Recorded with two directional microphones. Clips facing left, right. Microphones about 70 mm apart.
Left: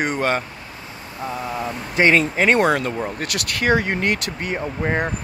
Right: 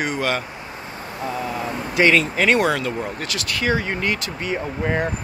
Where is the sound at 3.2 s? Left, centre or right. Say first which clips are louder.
Left 3 dB; left.